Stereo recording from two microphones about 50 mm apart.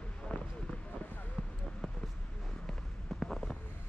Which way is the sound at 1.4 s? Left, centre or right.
Centre.